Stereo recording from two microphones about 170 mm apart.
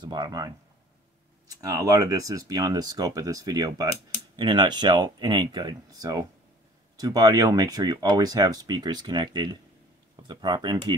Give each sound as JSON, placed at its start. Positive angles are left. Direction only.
{"t": 0.0, "sound": "speech", "side_deg": -25}
{"t": 1.5, "sound": "speech", "side_deg": -20}